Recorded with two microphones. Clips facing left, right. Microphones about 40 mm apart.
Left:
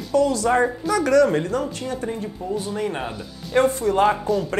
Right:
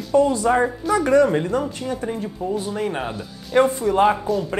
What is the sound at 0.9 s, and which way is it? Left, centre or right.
Speech, right.